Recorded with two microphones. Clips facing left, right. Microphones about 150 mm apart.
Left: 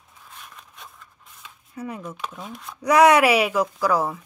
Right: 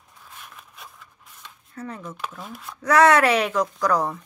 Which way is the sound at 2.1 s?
Centre (ahead or behind).